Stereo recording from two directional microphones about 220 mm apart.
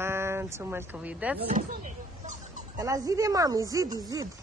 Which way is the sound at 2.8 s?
15° right (ahead or behind).